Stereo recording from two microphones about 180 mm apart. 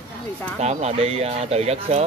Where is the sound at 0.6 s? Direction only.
40° right (ahead or behind).